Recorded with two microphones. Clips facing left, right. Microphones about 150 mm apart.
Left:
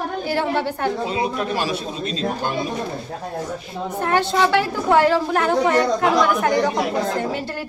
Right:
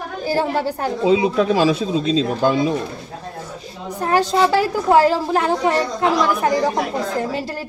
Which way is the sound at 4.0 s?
35° right (ahead or behind).